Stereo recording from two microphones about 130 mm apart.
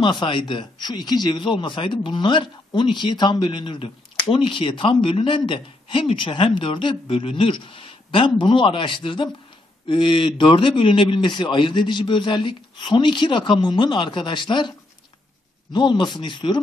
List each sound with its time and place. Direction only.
0.0 s a man's voice: 40° left (ahead or behind)
15.7 s a man's voice: 35° left (ahead or behind)